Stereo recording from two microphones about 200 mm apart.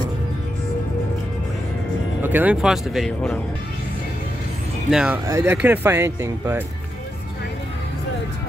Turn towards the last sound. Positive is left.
turn(degrees=-10)  # may be behind; listen again after turning